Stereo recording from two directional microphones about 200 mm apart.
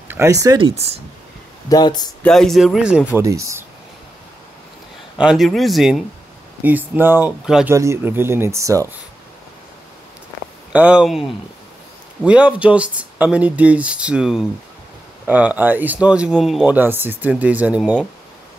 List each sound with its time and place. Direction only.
0.1 s speech: 15° right (ahead or behind)
0.7 s speech: 30° right (ahead or behind)
1.7 s speech: 20° left (ahead or behind)
2.2 s speech: centre (ahead or behind)
3.2 s speech: 15° right (ahead or behind)
5.2 s speech: centre (ahead or behind)
10.7 s speech: 5° right (ahead or behind)